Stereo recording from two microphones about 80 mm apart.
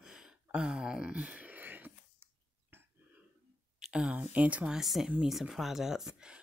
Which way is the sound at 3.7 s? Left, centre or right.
Centre.